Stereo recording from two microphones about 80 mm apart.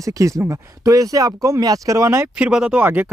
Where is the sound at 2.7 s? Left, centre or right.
Right.